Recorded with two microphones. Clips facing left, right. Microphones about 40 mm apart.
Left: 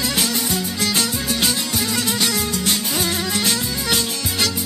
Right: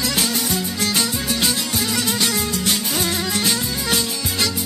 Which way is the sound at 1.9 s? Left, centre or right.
Centre.